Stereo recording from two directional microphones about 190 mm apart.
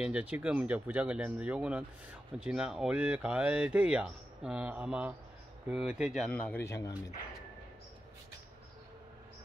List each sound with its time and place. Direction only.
0.0 s speech: 5° right (ahead or behind); by 7.0 s 15° left (ahead or behind)